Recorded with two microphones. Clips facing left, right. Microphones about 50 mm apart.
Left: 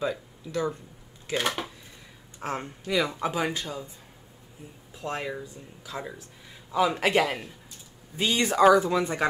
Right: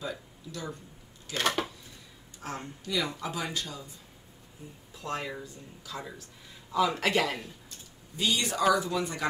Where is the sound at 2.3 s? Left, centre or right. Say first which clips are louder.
Left 6 dB; left.